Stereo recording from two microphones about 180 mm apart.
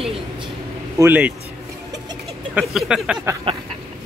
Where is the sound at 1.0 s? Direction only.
10° right (ahead or behind).